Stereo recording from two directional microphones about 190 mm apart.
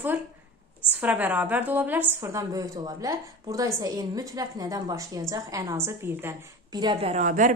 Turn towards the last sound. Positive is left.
turn(degrees=-40)  # may be behind; listen again after turning